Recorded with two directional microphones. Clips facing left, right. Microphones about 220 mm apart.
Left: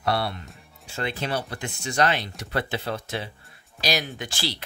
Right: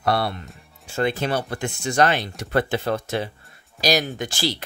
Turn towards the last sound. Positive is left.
turn(degrees=-45)  # may be behind; listen again after turning